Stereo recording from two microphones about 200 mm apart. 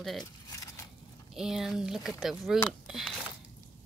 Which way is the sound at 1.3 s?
Centre (ahead or behind).